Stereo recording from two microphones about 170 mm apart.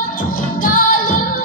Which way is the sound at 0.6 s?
50° left (ahead or behind).